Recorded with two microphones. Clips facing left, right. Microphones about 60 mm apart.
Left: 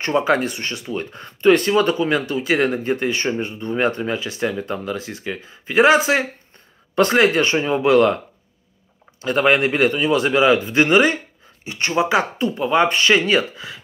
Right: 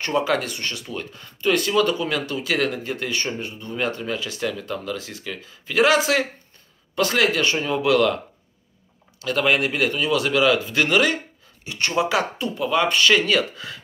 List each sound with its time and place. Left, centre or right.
0.0 s speech: left
9.2 s speech: left